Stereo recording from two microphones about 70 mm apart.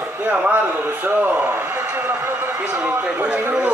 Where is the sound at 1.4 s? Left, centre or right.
Right.